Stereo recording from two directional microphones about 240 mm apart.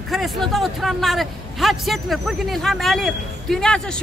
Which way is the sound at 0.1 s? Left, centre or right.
Centre.